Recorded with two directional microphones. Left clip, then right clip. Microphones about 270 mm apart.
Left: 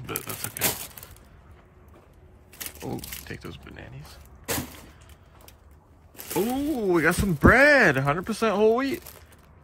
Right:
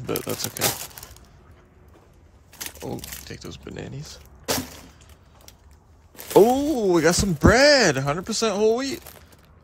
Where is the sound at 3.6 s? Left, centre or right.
Right.